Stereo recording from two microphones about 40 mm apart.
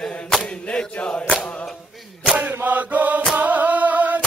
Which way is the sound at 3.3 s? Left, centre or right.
Right.